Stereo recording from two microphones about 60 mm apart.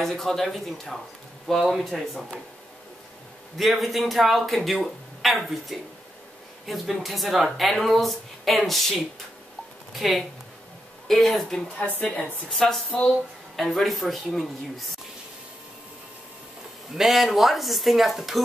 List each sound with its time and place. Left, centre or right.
0.0 s speech: centre
3.5 s speech: centre
11.8 s a woman's voice: left
12.5 s speech: centre
16.9 s speech: centre